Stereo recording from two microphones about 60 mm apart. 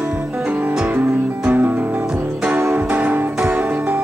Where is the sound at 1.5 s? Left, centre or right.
Right.